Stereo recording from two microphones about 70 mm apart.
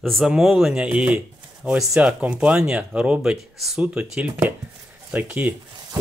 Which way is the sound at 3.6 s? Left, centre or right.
Centre.